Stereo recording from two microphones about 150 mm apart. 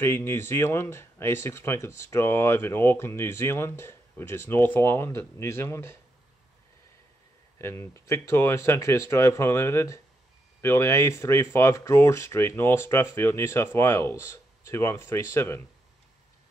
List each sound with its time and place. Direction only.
0.0 s speech: 15° left (ahead or behind)
7.5 s speech: 15° left (ahead or behind)